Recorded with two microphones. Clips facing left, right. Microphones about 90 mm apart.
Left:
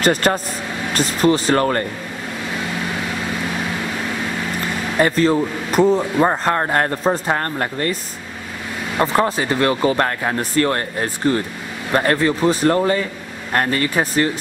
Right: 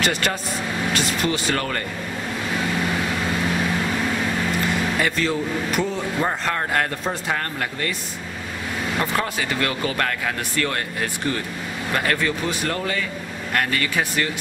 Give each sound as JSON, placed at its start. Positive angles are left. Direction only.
{"t": 0.0, "sound": "speech", "side_deg": 40}
{"t": 4.9, "sound": "speech", "side_deg": 40}
{"t": 8.9, "sound": "speech", "side_deg": 35}